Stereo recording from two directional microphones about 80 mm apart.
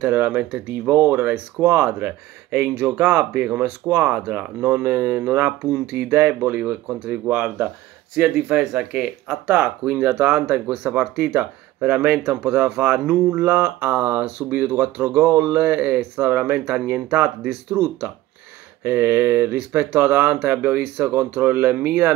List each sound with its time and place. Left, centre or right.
0.0 s speech: centre